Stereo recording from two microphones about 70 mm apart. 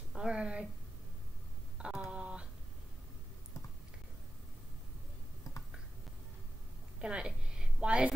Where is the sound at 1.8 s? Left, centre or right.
Centre.